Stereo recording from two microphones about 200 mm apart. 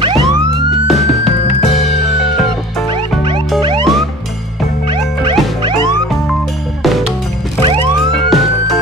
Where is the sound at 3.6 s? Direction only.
25° right (ahead or behind).